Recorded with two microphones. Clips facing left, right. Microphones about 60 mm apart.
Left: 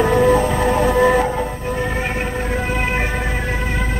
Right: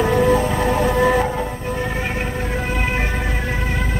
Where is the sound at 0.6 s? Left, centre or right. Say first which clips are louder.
Left 2 dB; centre.